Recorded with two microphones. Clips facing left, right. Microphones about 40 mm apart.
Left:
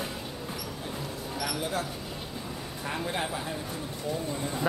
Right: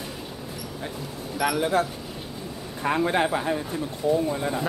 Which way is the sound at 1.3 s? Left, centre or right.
Right.